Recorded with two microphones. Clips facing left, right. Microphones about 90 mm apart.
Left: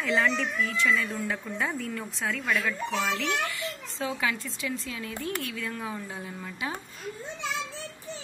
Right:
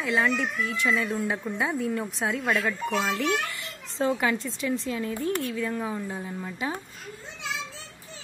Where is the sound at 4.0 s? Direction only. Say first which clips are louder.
Right 5 dB; 40° right (ahead or behind); by 6.1 s 20° right (ahead or behind).